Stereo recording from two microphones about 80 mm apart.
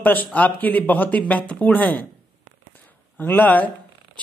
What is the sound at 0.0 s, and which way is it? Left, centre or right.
Speech, left.